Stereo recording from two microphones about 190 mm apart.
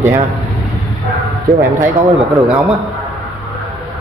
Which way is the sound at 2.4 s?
Centre (ahead or behind).